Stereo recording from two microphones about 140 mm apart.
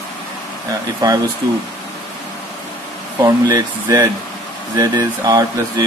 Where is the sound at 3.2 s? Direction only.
25° right (ahead or behind).